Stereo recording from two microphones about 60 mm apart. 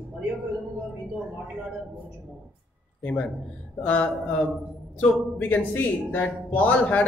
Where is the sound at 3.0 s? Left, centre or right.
Left.